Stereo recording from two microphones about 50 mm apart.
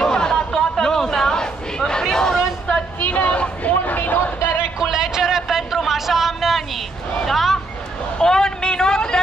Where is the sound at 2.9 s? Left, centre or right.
Left.